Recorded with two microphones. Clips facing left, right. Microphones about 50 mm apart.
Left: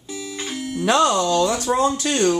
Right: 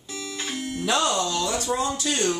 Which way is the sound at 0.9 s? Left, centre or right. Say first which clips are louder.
Left 7 dB; left.